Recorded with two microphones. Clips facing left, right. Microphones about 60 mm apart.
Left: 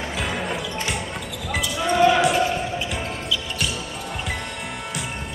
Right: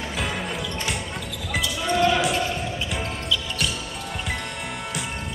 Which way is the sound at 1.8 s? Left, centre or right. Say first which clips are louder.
Left 4 dB; centre.